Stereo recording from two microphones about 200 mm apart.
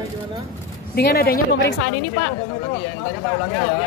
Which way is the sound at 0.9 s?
50° left (ahead or behind).